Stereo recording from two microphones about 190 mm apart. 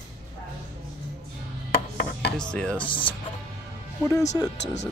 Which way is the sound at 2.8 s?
25° left (ahead or behind).